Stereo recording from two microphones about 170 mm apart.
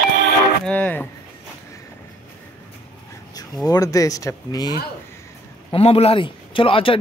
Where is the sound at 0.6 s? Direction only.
10° left (ahead or behind).